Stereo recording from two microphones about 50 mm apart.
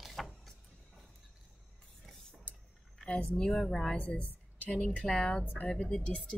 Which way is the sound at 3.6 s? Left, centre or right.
Centre.